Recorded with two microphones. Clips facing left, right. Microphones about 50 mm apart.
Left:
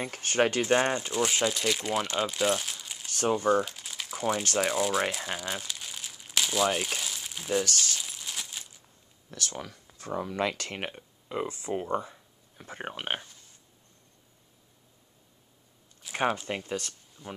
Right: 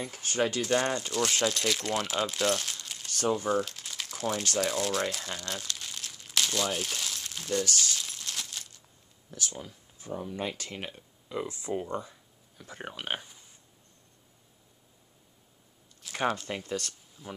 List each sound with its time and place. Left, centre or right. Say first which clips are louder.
0.0 s speech: left 3 dB; left
0.6 s speech: left 3 dB; left; by 3.1 s centre
3.1 s crumpling: left 1 dB; left
3.3 s speech: left 4 dB; centre
5.1 s crumpling: left 3 dB; centre
7.6 s speech: even; left
7.9 s a sound: even; centre
9.3 s speech: left 2 dB; left
11.0 s speech: left 2 dB; left
13.2 s a sound: left 1 dB; centre
16.0 s speech: left 2 dB; centre
17.2 s speech: left 1 dB; centre